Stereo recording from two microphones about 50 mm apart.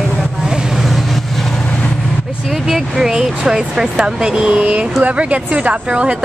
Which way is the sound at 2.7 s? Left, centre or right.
Centre.